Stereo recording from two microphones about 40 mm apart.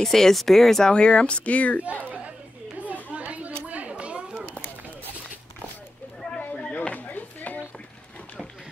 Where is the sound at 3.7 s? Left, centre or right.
Right.